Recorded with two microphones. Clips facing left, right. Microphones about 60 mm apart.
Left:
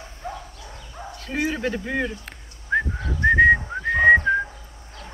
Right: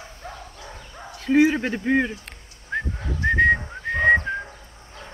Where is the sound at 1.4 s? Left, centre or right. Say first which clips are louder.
Right 6 dB; centre.